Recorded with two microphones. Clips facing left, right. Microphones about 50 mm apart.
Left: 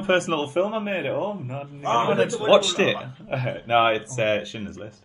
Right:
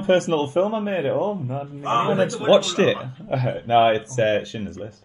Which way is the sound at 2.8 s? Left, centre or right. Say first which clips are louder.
Right 3 dB; centre.